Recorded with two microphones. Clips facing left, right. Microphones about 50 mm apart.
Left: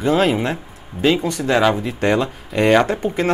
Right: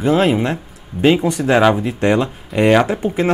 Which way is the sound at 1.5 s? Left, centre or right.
Centre.